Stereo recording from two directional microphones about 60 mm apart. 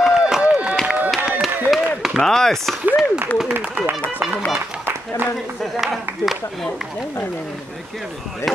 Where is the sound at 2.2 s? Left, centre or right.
Centre.